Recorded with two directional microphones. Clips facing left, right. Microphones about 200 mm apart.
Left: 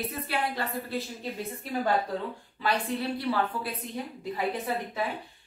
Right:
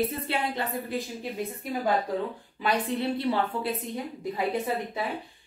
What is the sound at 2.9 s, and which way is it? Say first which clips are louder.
Speech: right 2 dB; 25° right (ahead or behind).